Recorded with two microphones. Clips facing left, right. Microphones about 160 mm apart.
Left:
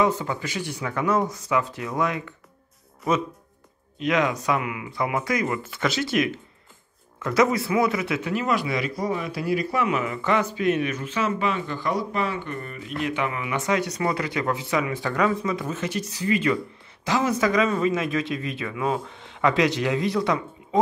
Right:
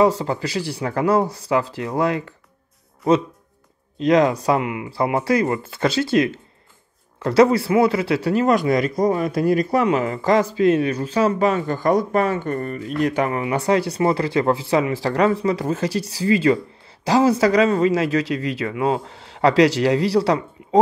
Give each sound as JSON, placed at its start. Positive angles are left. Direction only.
{"t": 0.0, "sound": "speech", "side_deg": -35}
{"t": 4.0, "sound": "speech", "side_deg": -35}
{"t": 18.3, "sound": "speech", "side_deg": -90}
{"t": 18.6, "sound": "speech", "side_deg": -30}